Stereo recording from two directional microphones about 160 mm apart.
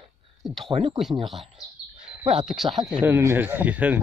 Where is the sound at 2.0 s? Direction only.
35° right (ahead or behind).